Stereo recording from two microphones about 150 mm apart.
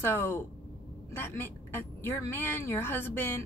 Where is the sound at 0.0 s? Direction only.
15° left (ahead or behind).